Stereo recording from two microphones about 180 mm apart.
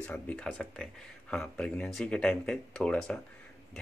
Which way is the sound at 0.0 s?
5° left (ahead or behind).